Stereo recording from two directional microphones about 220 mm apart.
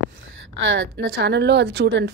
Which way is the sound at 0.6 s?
55° right (ahead or behind).